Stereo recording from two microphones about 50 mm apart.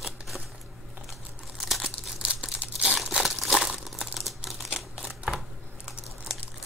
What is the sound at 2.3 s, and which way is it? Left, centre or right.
Crumpling, right.